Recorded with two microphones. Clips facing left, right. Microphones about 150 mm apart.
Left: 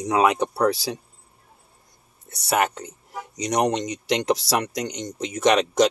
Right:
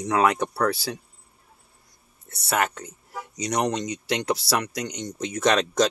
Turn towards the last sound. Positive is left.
turn(degrees=15)  # may be behind; listen again after turning